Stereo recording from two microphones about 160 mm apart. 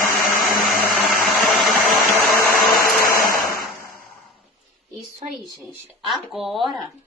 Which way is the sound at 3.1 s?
60° left (ahead or behind).